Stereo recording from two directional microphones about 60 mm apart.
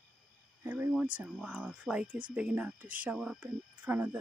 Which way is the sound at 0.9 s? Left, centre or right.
Right.